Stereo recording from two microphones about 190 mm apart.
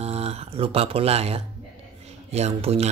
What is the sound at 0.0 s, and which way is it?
Speech, 30° right (ahead or behind).